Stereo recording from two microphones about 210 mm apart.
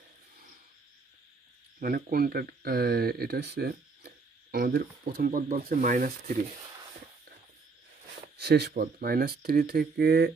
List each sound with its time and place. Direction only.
1.8 s speech: 40° right (ahead or behind)
8.4 s speech: 50° right (ahead or behind)